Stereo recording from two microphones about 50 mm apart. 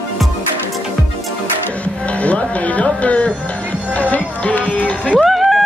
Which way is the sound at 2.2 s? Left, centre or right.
Left.